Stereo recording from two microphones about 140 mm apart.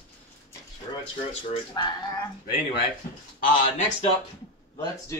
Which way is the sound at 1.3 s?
40° left (ahead or behind).